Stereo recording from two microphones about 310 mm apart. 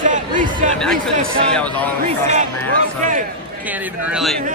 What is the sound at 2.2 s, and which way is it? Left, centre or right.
Speech, right.